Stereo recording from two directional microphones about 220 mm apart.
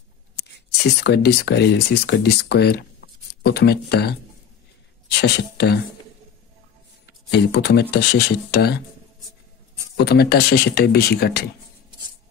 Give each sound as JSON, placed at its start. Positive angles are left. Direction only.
{"t": 0.7, "sound": "speech", "side_deg": 50}
{"t": 5.2, "sound": "speech", "side_deg": 50}
{"t": 7.1, "sound": "speech", "side_deg": 50}
{"t": 10.0, "sound": "speech", "side_deg": 45}